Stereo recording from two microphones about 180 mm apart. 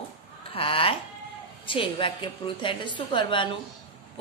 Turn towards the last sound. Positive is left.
turn(degrees=25)  # may be behind; listen again after turning